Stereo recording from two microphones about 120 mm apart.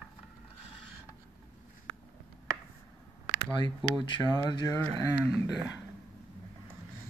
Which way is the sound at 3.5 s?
40° left (ahead or behind).